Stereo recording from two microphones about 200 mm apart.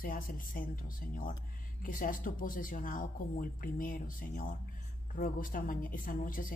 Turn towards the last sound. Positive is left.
turn(degrees=45)  # may be behind; listen again after turning